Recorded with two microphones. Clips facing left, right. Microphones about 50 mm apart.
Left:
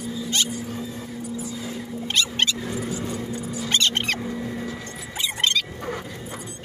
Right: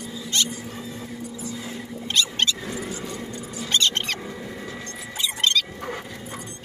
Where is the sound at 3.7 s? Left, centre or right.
Left.